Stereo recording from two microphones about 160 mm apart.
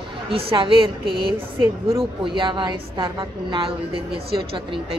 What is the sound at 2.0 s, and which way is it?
A woman's voice, 30° right (ahead or behind).